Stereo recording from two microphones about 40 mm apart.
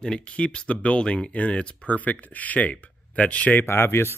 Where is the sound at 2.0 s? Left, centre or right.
Left.